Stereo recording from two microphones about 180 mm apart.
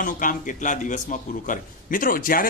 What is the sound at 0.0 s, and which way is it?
Speech, 45° left (ahead or behind).